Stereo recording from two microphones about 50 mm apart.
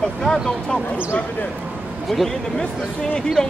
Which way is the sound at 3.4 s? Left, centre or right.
Centre.